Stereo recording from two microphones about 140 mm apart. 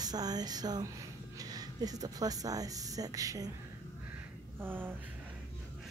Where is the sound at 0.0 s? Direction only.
30° right (ahead or behind).